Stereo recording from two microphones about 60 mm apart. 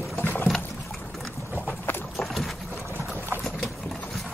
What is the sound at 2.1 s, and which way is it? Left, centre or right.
Boat, centre.